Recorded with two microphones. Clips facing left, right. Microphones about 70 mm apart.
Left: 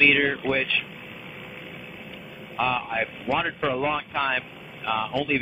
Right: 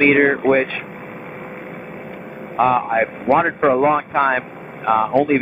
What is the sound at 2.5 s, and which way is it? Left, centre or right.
Speech, right.